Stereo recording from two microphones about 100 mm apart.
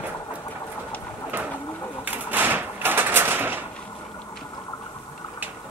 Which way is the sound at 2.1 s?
20° right (ahead or behind).